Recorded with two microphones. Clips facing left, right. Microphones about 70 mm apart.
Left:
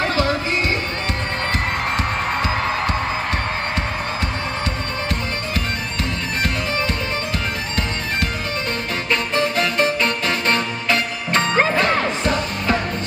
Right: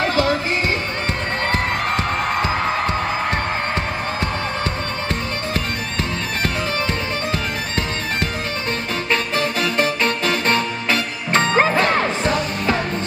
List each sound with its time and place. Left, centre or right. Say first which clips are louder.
1.5 s music: right 1 dB; right
10.0 s music: right 1 dB; right